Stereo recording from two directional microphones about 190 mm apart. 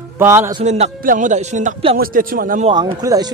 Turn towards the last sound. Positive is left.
turn(degrees=-20)  # may be behind; listen again after turning